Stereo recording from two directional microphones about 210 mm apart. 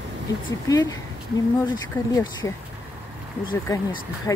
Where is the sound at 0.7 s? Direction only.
20° left (ahead or behind).